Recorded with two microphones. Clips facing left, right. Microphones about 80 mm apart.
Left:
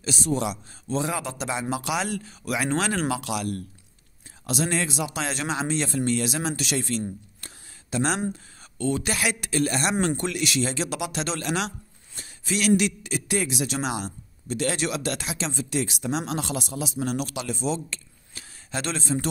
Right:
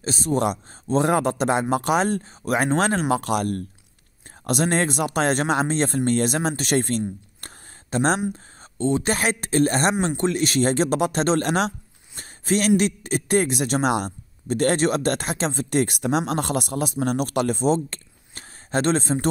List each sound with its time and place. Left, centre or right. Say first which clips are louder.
0.0 s a man's voice: right 4 dB; right
8.7 s a man's voice: right 4 dB; right